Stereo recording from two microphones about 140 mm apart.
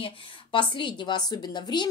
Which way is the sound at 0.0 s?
35° left (ahead or behind).